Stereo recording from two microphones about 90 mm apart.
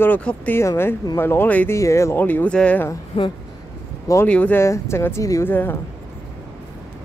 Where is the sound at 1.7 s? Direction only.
35° left (ahead or behind).